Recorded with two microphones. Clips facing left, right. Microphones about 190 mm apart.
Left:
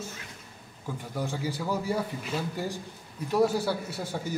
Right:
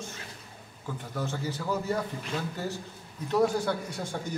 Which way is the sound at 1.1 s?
10° left (ahead or behind).